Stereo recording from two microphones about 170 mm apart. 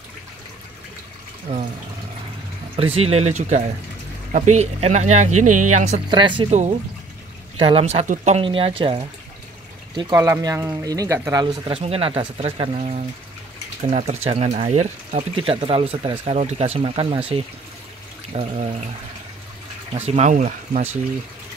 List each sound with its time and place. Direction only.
1.5 s speech: 40° right (ahead or behind)
2.7 s speech: 35° right (ahead or behind)
6.0 s speech: 30° right (ahead or behind)
6.5 s speech: 40° right (ahead or behind)
8.5 s speech: 30° right (ahead or behind); by 11.4 s 15° right (ahead or behind)
11.6 s speech: 35° right (ahead or behind)
18.3 s speech: 40° right (ahead or behind)
20.1 s speech: 45° right (ahead or behind)